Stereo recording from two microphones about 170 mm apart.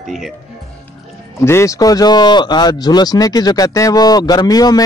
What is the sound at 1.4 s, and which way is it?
Speech, 15° left (ahead or behind).